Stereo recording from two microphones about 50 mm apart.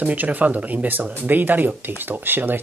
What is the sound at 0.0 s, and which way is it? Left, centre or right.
Speech, right.